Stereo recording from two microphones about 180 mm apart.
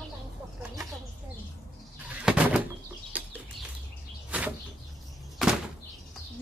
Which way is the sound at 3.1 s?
10° right (ahead or behind).